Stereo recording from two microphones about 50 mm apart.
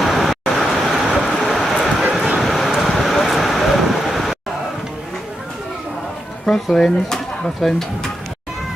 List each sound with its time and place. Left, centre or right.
0.0 s vehicle: centre
1.3 s a sound: centre
2.1 s vehicle: centre
6.4 s speech: centre